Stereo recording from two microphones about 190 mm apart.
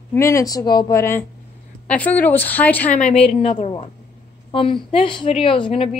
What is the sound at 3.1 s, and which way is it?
A woman's voice, 30° left (ahead or behind).